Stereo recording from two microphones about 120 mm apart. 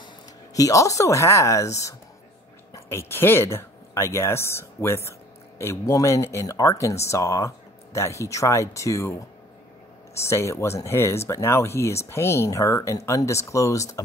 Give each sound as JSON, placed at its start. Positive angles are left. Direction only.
{"t": 0.6, "sound": "speech", "side_deg": 25}